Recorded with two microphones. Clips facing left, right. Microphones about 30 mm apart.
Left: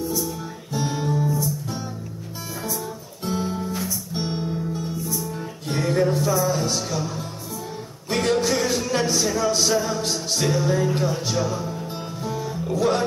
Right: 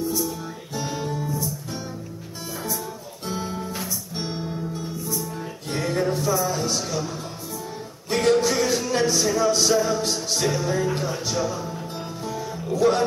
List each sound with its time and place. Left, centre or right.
0.7 s music: centre
3.3 s music: centre
8.1 s music: centre
11.0 s speech: centre
12.4 s music: centre